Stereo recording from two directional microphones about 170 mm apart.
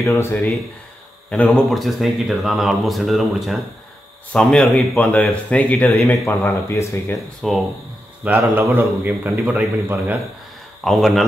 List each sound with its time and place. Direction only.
0.0 s a man's voice: 15° left (ahead or behind)
6.2 s a man's voice: 15° left (ahead or behind)
7.4 s speech: centre (ahead or behind)
8.2 s a man's voice: 10° right (ahead or behind)
10.8 s speech: centre (ahead or behind)